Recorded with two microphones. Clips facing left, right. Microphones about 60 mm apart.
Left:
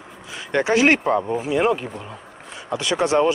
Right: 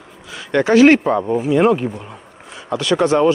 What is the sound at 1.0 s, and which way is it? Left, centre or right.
Speech, centre.